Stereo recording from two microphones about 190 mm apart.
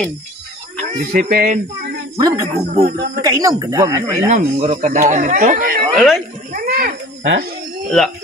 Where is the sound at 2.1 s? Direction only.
20° right (ahead or behind).